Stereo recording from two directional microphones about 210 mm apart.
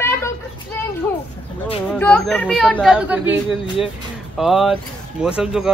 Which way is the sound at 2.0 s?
5° left (ahead or behind).